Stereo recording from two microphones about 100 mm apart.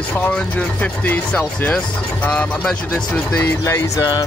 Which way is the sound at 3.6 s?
30° left (ahead or behind).